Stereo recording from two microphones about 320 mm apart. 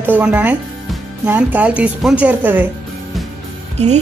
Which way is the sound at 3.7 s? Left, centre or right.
Right.